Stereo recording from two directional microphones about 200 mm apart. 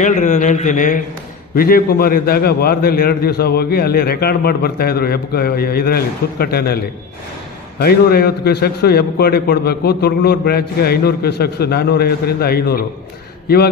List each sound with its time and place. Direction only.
0.0 s a man's voice: 40° left (ahead or behind)
7.8 s a man's voice: 50° left (ahead or behind)